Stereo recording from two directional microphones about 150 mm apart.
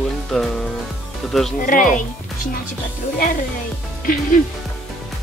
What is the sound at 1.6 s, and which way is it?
Speech, 60° left (ahead or behind).